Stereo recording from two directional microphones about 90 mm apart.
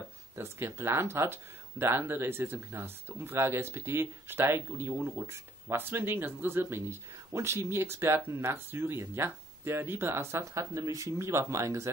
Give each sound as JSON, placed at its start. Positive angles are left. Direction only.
{"t": 0.4, "sound": "speech", "side_deg": -30}